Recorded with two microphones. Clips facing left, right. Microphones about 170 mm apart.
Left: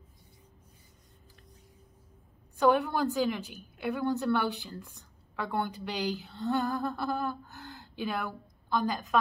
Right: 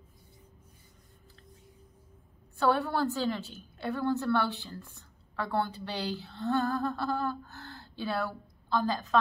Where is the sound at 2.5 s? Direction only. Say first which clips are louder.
Left 2 dB; 15° left (ahead or behind).